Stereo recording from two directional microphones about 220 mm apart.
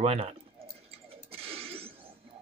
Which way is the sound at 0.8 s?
25° right (ahead or behind).